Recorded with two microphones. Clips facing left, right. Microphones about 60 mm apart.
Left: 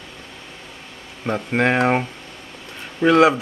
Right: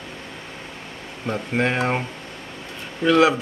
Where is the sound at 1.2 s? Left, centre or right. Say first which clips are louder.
Left 3 dB; left.